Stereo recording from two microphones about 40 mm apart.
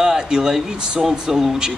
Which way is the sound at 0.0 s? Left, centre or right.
Centre.